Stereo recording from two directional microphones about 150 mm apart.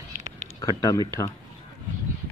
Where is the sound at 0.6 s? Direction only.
25° left (ahead or behind).